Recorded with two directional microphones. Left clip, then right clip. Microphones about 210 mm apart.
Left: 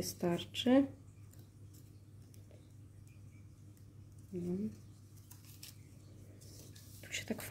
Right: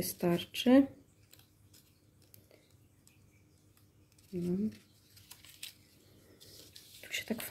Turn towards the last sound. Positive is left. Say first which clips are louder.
# right 4 dB
turn(degrees=-10)  # may be behind; listen again after turning